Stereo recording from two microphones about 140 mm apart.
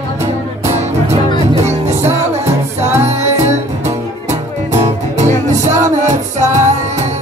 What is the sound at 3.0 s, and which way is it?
Music, 55° right (ahead or behind).